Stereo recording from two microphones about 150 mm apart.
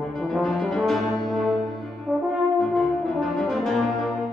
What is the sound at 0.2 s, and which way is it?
Brass instrument, centre (ahead or behind).